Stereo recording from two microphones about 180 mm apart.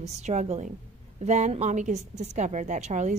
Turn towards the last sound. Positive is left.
turn(degrees=-40)  # may be behind; listen again after turning